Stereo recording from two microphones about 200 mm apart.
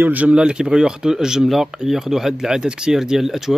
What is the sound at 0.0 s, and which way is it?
Speech, 10° right (ahead or behind).